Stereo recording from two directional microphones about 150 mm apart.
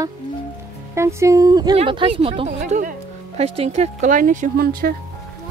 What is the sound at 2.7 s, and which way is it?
Music, 55° right (ahead or behind).